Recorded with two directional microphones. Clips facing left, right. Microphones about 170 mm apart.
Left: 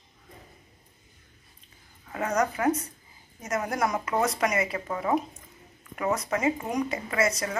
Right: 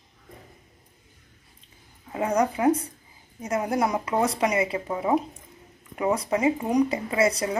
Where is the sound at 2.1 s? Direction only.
10° right (ahead or behind).